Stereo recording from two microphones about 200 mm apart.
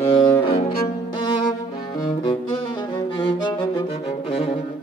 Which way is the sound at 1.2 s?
20° left (ahead or behind).